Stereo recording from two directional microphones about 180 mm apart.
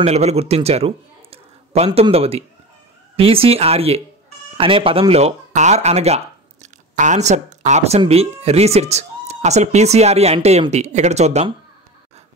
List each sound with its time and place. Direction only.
0.0 s speech: 35° right (ahead or behind)